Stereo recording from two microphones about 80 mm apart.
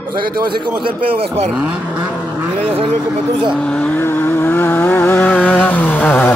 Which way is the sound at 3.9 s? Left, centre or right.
Left.